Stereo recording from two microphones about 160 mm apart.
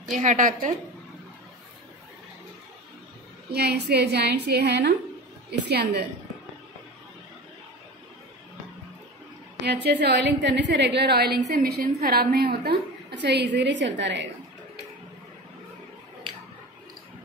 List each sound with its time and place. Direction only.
0.1 s a woman's voice: 50° right (ahead or behind)
3.5 s a woman's voice: 90° right
9.8 s a woman's voice: 90° right